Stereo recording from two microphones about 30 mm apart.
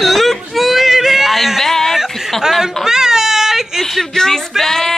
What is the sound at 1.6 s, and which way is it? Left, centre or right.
Speech, centre.